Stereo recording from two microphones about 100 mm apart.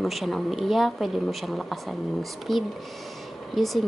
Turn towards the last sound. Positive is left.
turn(degrees=0)  # may be behind; listen again after turning